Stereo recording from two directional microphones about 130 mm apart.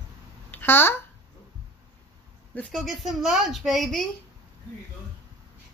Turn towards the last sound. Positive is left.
turn(degrees=0)  # may be behind; listen again after turning